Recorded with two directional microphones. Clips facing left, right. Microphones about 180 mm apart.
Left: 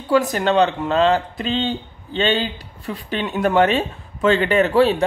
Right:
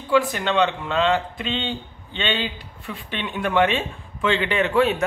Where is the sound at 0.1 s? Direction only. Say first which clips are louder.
Left 3 dB; 40° left (ahead or behind).